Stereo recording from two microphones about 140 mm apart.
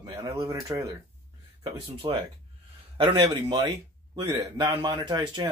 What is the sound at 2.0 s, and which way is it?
Speech, 35° right (ahead or behind).